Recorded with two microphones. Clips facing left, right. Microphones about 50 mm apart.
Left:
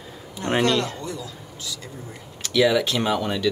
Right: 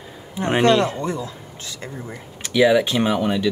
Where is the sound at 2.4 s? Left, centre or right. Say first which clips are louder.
Right 3 dB; centre.